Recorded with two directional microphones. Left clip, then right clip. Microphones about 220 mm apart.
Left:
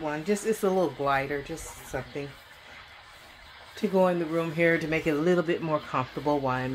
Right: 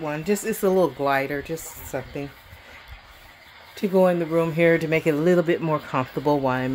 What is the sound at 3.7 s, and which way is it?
Speech, 45° right (ahead or behind).